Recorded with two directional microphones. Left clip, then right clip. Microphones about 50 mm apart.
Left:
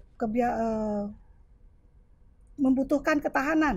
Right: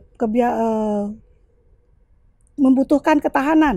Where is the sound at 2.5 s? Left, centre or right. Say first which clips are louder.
Right 9 dB; centre.